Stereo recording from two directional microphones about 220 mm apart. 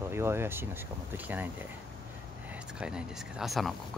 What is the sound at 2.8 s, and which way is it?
Speech, 5° right (ahead or behind).